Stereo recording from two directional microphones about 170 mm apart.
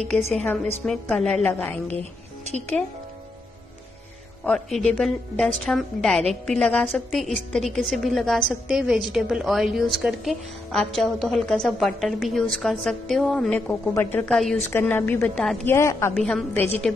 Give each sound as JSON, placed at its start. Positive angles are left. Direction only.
{"t": 0.3, "sound": "a woman's voice", "side_deg": 5}
{"t": 4.5, "sound": "a woman's voice", "side_deg": 5}
{"t": 16.2, "sound": "a woman's voice", "side_deg": 0}
{"t": 16.5, "sound": "a woman's voice", "side_deg": 10}